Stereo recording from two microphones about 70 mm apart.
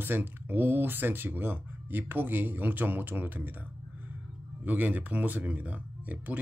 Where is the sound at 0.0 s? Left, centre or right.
Right.